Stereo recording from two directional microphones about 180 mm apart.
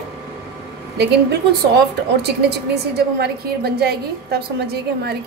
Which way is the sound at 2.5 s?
65° right (ahead or behind).